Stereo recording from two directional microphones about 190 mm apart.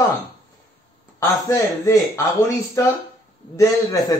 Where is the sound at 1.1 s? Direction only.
15° left (ahead or behind).